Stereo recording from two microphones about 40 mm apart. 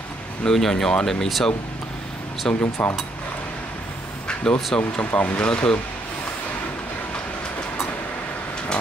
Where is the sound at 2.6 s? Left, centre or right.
Left.